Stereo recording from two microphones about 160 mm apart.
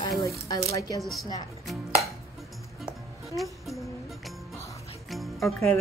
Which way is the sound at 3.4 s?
Centre (ahead or behind).